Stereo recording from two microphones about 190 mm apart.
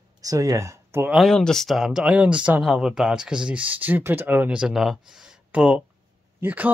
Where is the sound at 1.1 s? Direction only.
5° left (ahead or behind).